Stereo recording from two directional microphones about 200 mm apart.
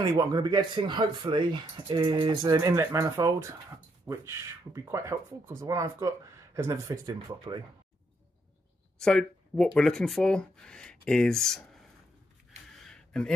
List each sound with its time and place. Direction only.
0.0 s speech: 20° right (ahead or behind)
9.0 s speech: 5° left (ahead or behind)
12.7 s gasp: 5° left (ahead or behind)